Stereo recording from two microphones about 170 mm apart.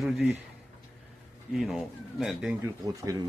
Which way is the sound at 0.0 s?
10° right (ahead or behind).